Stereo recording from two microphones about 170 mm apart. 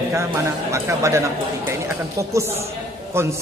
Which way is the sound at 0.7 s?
15° right (ahead or behind).